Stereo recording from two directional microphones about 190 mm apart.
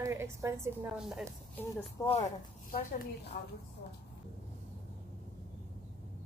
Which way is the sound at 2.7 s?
60° left (ahead or behind).